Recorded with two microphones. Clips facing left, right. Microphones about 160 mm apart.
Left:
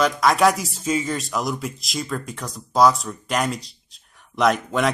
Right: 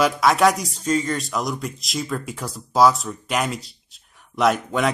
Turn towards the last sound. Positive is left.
turn(degrees=0)  # may be behind; listen again after turning